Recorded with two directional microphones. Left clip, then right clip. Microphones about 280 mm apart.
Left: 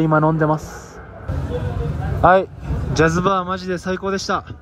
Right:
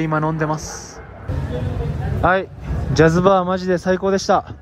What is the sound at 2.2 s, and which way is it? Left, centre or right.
Speech, centre.